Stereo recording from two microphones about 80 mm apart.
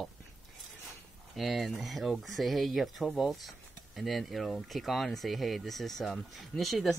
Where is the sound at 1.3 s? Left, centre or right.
Centre.